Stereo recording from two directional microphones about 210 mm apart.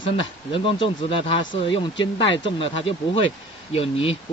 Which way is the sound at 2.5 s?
25° left (ahead or behind).